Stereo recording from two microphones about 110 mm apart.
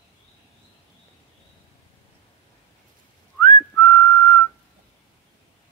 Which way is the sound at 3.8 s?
25° left (ahead or behind).